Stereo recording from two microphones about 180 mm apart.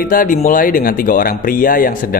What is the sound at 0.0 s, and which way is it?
Speech, 50° left (ahead or behind).